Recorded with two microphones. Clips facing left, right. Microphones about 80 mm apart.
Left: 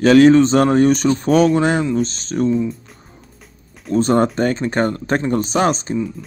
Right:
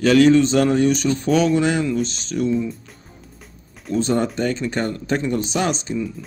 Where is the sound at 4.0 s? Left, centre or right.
Left.